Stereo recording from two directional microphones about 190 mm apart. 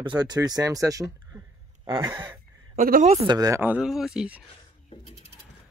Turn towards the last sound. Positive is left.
turn(degrees=-5)  # may be behind; listen again after turning